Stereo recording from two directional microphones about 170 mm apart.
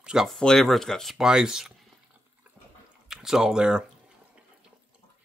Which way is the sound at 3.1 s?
5° right (ahead or behind).